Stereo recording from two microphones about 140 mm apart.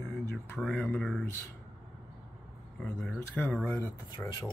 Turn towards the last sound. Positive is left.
turn(degrees=10)  # may be behind; listen again after turning